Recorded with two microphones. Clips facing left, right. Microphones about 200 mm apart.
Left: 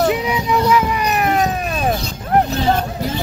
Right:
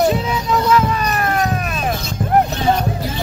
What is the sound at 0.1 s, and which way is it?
Music, 15° left (ahead or behind).